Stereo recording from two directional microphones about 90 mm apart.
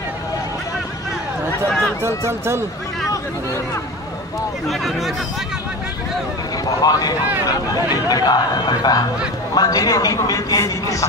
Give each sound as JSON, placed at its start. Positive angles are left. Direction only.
{"t": 2.0, "sound": "speech", "side_deg": -30}
{"t": 4.6, "sound": "speech", "side_deg": 0}
{"t": 6.8, "sound": "a man's voice", "side_deg": 45}